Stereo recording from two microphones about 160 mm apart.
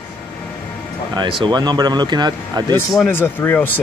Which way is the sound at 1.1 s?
30° right (ahead or behind).